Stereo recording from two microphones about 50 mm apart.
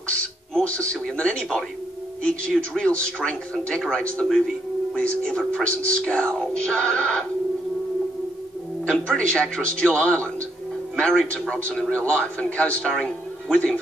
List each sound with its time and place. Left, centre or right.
0.1 s speech: left
2.7 s speech: centre
8.8 s speech: centre